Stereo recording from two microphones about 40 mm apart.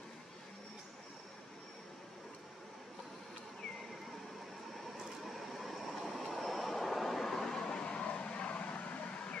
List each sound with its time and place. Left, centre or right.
5.2 s train: centre
6.3 s vehicle: centre
7.6 s vehicle: left